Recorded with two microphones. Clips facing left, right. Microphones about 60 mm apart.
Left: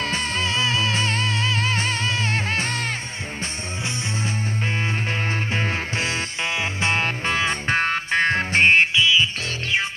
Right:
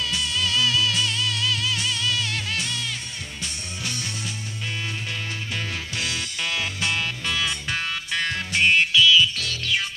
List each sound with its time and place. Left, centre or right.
0.0 s music: left
5.5 s music: left